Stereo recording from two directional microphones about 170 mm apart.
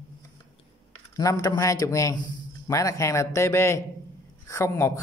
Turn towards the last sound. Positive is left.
turn(degrees=15)  # may be behind; listen again after turning